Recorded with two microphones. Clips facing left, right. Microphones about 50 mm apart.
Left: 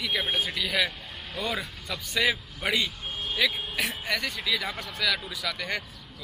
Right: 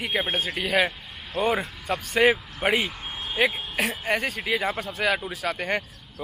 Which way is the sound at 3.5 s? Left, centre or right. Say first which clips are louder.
Right 3 dB; centre.